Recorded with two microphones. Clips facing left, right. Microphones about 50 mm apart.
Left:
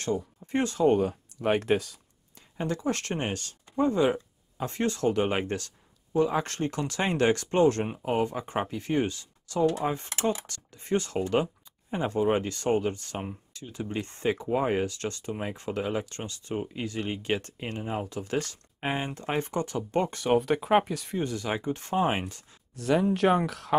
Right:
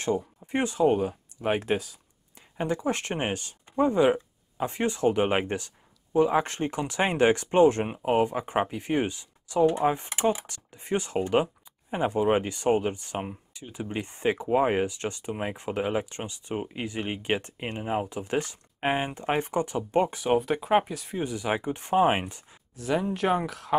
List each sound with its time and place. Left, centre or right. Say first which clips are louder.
0.0 s speech: right 2 dB; centre
0.8 s speech: left 2 dB; centre
2.3 s speech: right 2 dB; centre
22.8 s speech: left 3 dB; centre